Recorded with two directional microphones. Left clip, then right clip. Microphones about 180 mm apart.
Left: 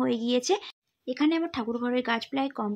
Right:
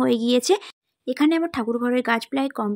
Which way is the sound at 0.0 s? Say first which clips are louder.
Right 7 dB; 35° right (ahead or behind).